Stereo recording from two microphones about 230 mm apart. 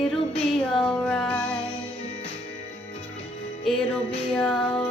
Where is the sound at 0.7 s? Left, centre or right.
Centre.